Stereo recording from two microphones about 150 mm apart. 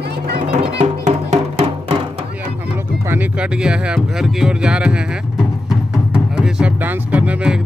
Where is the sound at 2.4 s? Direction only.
15° right (ahead or behind).